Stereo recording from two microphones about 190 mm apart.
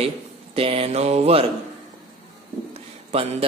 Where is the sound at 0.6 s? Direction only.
30° right (ahead or behind).